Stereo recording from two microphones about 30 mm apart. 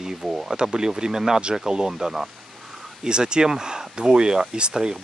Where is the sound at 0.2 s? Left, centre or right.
Centre.